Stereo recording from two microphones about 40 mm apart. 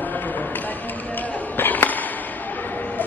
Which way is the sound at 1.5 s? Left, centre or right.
Left.